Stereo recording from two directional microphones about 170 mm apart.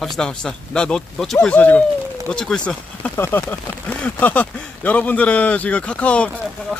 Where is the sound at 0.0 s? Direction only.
Centre (ahead or behind).